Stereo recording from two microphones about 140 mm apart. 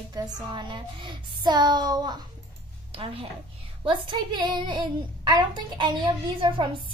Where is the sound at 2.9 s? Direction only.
40° right (ahead or behind).